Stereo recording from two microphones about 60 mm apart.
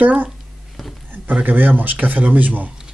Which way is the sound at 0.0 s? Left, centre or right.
Right.